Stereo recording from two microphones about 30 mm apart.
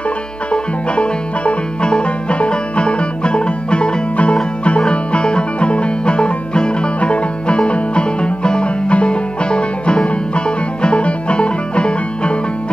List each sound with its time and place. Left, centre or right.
0.5 s music: left